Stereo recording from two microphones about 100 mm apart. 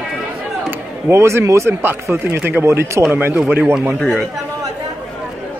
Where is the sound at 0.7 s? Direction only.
25° right (ahead or behind).